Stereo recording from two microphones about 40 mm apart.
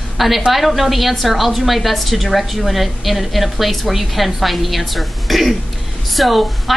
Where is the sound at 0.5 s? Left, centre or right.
Centre.